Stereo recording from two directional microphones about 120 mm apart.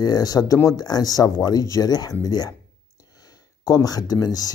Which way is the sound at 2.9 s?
30° left (ahead or behind).